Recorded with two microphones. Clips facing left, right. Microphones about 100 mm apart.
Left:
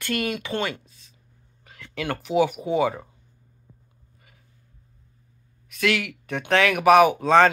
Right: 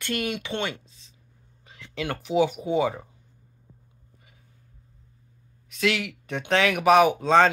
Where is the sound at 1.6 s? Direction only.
20° right (ahead or behind).